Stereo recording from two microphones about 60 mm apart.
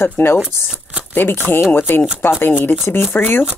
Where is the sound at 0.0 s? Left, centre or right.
Left.